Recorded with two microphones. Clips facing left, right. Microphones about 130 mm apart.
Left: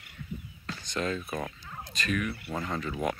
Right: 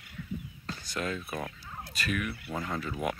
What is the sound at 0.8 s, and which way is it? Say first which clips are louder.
Speech: left 3 dB; 5° right (ahead or behind).